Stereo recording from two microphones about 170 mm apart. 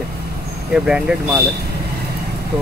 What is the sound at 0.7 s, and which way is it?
Speech, 5° right (ahead or behind).